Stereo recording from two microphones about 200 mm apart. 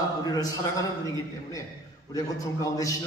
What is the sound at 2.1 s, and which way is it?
Speech, 15° left (ahead or behind).